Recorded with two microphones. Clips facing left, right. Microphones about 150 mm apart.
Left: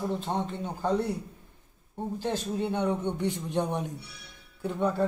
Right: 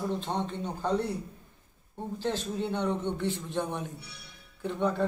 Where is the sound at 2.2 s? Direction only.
15° left (ahead or behind).